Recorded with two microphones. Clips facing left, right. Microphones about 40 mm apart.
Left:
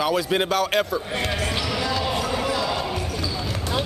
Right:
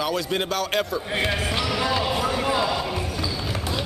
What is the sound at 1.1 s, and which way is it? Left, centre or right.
Basketball bounce, centre.